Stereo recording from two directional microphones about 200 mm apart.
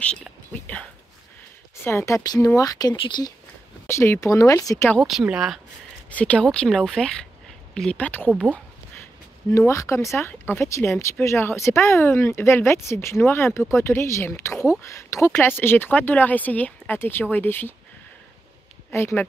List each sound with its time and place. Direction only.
0.0 s speech: 5° left (ahead or behind)
1.9 s speech: 15° left (ahead or behind)
5.0 s speech: 5° right (ahead or behind)
8.3 s speech: 5° right (ahead or behind)
9.5 s speech: 15° left (ahead or behind)
18.9 s speech: 10° left (ahead or behind)